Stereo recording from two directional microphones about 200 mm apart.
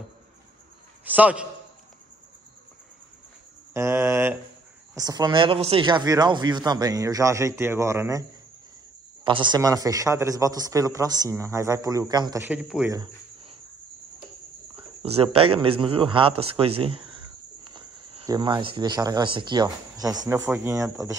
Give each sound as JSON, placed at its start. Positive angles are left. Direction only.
{"t": 1.0, "sound": "a man's voice", "side_deg": -10}
{"t": 3.7, "sound": "a man's voice", "side_deg": -15}
{"t": 12.4, "sound": "a man's voice", "side_deg": -5}
{"t": 12.9, "sound": "cricket", "side_deg": -25}
{"t": 14.8, "sound": "a sound", "side_deg": -30}
{"t": 15.3, "sound": "speech", "side_deg": -30}